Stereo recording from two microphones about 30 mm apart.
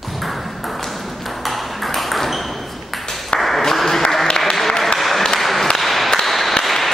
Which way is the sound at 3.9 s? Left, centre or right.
Centre.